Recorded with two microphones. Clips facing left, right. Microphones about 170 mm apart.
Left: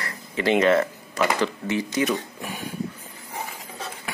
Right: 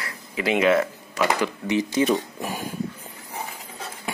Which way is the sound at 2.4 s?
40° right (ahead or behind).